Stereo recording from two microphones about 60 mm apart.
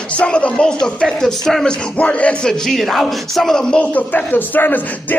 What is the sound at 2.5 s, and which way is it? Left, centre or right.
A man's voice, centre.